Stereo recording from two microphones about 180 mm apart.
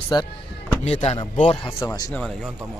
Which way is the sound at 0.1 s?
25° left (ahead or behind).